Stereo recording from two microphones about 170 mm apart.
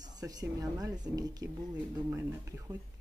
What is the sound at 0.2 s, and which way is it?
A woman's voice, 20° right (ahead or behind).